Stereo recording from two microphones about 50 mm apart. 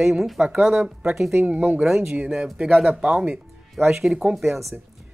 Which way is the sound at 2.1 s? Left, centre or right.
Right.